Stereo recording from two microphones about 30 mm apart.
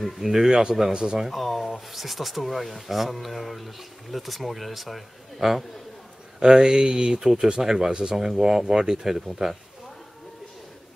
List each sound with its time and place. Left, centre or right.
0.2 s speech: centre
1.3 s speech: centre
5.4 s speech: centre
6.4 s speech: right
9.0 s speech: centre